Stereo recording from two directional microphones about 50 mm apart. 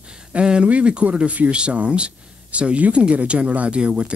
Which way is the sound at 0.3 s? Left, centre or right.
Right.